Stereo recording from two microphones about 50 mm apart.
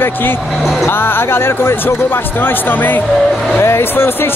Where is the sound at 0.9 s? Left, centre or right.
Left.